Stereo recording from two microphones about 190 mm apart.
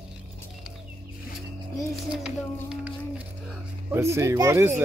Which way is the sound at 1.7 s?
Centre (ahead or behind).